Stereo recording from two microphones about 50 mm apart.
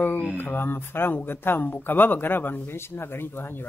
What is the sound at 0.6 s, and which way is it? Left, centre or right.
Speech, left.